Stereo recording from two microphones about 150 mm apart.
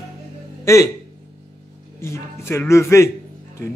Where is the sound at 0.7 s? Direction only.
20° left (ahead or behind).